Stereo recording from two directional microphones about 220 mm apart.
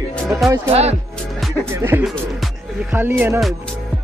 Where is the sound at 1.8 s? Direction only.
10° right (ahead or behind).